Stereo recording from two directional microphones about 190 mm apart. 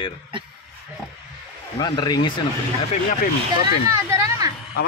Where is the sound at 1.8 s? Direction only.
25° left (ahead or behind).